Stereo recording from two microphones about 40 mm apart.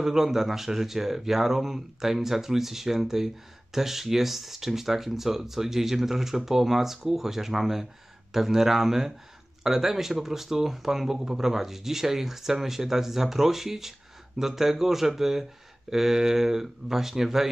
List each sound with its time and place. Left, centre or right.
0.0 s speech: centre